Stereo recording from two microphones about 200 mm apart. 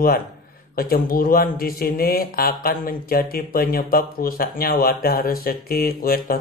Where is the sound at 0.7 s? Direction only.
50° left (ahead or behind).